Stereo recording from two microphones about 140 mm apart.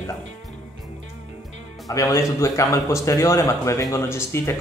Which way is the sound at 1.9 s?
25° left (ahead or behind).